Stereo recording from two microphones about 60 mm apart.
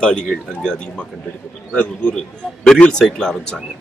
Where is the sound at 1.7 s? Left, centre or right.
Centre.